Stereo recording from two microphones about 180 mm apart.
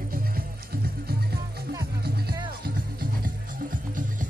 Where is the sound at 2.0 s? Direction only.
60° right (ahead or behind).